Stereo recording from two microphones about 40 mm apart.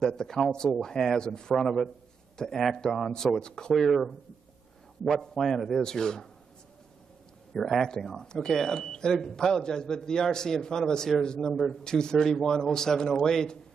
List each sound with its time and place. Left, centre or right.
0.0 s speech: centre
1.6 s speech: centre
3.7 s a man's voice: centre
5.2 s a man's voice: centre
5.8 s speech: centre
7.8 s speech: centre